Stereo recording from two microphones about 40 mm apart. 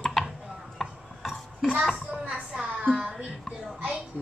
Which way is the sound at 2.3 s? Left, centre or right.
Right.